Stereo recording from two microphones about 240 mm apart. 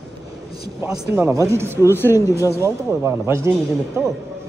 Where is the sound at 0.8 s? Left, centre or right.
Centre.